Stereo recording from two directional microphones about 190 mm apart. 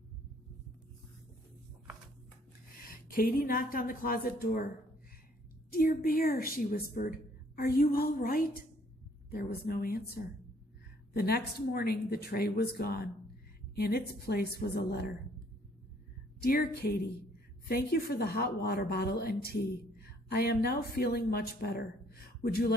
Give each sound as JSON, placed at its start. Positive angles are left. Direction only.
{"t": 2.9, "sound": "a woman's voice", "side_deg": 50}
{"t": 5.7, "sound": "a woman's voice", "side_deg": 50}
{"t": 16.3, "sound": "a woman's voice", "side_deg": 55}